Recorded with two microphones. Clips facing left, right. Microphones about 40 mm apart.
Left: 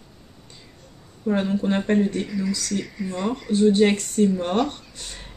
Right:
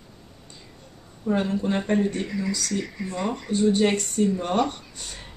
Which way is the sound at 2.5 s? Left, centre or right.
Centre.